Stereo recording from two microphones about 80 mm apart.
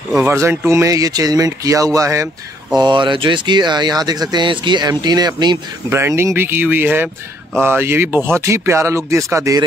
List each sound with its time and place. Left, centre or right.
0.3 s speech: right
2.7 s speech: right
5.9 s speech: right